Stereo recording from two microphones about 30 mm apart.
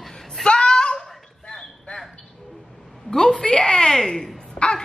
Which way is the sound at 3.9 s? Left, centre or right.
Centre.